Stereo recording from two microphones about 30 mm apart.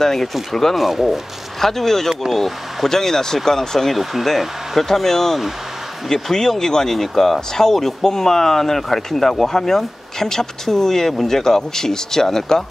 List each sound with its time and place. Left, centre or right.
0.0 s speech: centre
0.7 s speech: centre
1.6 s speech: centre
2.9 s speech: centre
3.9 s speech: centre
4.7 s speech: centre